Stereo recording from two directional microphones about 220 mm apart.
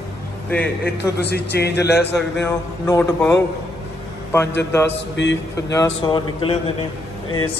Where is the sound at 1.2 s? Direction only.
45° left (ahead or behind).